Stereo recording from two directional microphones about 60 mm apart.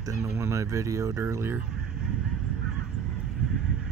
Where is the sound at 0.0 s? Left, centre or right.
Right.